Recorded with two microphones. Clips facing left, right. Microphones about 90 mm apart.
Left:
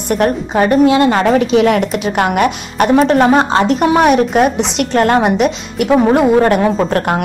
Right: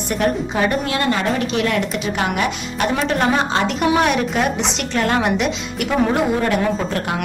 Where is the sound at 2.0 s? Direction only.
50° left (ahead or behind).